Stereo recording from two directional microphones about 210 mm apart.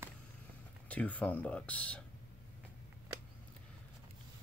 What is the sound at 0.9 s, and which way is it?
Speech, 5° left (ahead or behind).